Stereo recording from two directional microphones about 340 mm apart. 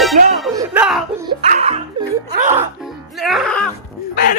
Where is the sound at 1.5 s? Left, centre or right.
Centre.